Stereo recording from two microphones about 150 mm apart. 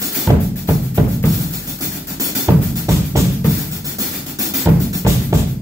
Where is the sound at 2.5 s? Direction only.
20° right (ahead or behind).